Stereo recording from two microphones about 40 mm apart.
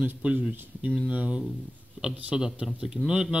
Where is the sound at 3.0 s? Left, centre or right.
Centre.